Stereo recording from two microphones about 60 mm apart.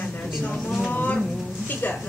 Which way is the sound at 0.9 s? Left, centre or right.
Left.